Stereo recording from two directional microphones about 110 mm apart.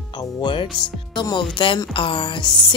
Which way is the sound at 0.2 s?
45° left (ahead or behind).